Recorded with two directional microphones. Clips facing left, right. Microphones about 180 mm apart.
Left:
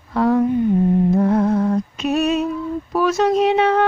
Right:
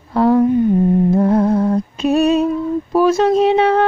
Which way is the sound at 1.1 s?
30° right (ahead or behind).